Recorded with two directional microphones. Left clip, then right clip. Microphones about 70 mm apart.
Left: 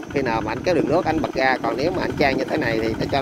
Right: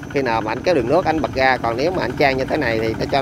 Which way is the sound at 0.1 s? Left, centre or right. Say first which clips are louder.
Right 3 dB; right.